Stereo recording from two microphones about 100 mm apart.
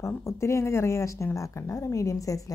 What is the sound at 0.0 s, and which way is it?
A woman's voice, 30° left (ahead or behind).